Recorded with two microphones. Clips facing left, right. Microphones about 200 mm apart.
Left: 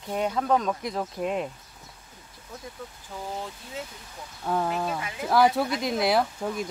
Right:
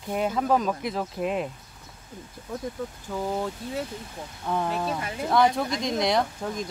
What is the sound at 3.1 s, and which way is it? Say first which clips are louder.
Speech: right 8 dB; 50° right (ahead or behind).